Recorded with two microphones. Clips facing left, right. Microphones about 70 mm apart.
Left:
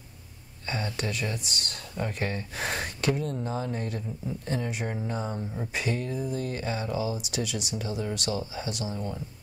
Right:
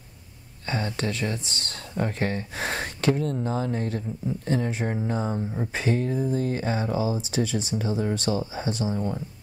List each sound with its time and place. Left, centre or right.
0.7 s speech: right
5.7 s speech: right